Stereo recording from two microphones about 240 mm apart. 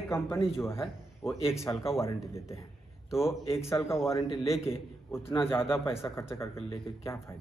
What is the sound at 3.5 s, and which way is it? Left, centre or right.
Speech, centre.